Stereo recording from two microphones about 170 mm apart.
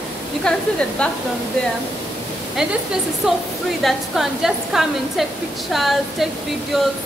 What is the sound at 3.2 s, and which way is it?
A woman's voice, 5° right (ahead or behind).